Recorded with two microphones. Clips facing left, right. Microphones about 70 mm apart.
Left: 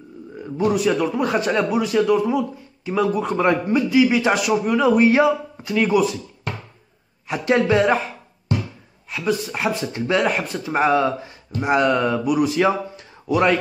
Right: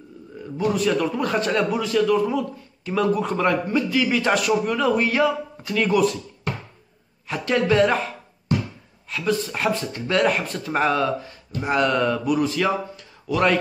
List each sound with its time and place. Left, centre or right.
0.7 s speech: centre
3.4 s speech: centre
5.0 s speech: centre
5.7 s speech: centre
7.2 s speech: centre
9.1 s speech: centre